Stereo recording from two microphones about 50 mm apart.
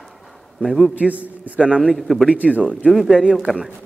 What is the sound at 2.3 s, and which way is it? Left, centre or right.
Speech, right.